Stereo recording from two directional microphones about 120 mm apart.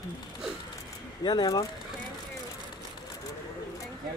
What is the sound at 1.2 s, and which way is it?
Speech, 35° left (ahead or behind).